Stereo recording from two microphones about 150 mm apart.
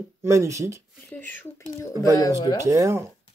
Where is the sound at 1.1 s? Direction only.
10° left (ahead or behind).